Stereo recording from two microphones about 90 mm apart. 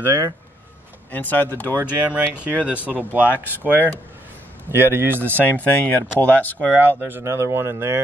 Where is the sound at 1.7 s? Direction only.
20° right (ahead or behind).